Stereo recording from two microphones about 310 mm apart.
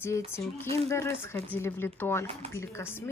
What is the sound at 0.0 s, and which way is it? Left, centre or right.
Speech, centre.